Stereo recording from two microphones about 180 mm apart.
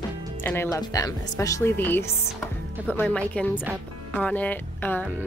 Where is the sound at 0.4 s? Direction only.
15° left (ahead or behind).